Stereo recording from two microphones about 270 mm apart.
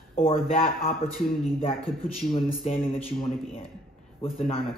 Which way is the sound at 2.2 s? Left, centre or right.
Left.